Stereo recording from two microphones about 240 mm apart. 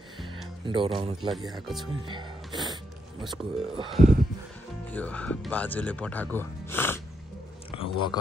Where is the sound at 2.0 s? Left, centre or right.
Centre.